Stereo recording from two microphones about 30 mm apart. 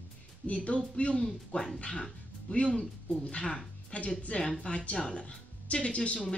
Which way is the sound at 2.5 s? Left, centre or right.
Left.